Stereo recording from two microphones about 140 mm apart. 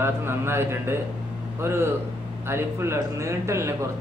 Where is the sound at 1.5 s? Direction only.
15° right (ahead or behind).